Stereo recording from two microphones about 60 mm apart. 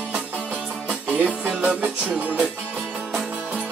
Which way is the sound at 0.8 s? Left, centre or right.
Right.